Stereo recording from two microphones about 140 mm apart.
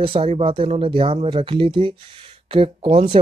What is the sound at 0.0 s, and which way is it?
Speech, 40° right (ahead or behind).